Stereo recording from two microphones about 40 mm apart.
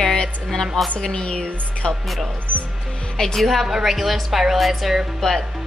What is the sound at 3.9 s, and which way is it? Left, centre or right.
A woman's voice, centre.